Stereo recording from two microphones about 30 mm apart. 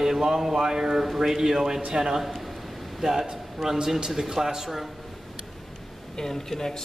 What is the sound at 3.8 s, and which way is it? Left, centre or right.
Speech, right.